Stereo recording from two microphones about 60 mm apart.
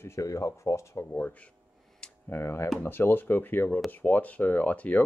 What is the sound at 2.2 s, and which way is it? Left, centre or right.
Speech, left.